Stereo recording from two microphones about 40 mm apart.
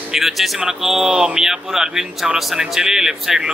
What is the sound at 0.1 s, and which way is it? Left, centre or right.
A man's voice, centre.